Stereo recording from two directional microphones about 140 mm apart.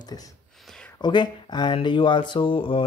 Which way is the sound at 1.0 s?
35° left (ahead or behind).